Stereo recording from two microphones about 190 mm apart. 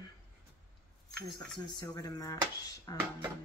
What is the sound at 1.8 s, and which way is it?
Speech, 20° left (ahead or behind).